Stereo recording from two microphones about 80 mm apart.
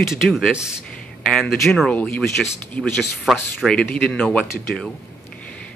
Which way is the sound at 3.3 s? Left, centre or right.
Centre.